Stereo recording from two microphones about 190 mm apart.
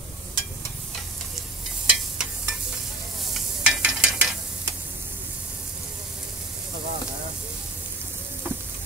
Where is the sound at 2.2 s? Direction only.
Centre (ahead or behind).